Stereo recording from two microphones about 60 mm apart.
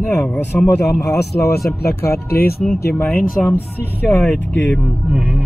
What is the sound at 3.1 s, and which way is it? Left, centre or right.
Speech, centre.